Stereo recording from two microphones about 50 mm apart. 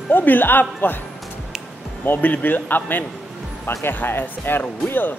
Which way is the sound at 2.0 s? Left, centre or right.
Left.